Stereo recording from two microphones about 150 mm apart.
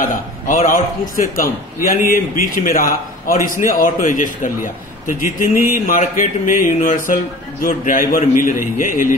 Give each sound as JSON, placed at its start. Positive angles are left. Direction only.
{"t": 0.0, "sound": "a man's voice", "side_deg": 65}